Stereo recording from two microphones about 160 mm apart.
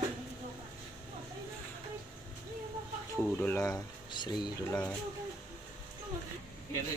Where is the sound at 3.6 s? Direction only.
25° left (ahead or behind).